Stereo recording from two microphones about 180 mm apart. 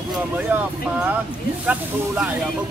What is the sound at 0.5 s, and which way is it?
Speech, 10° right (ahead or behind).